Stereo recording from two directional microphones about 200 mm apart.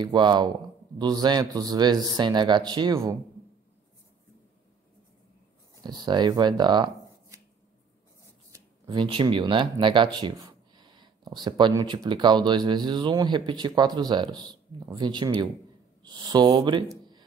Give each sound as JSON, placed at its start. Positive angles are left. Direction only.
{"t": 0.0, "sound": "speech", "side_deg": -20}
{"t": 5.9, "sound": "speech", "side_deg": -20}
{"t": 8.5, "sound": "speech", "side_deg": -20}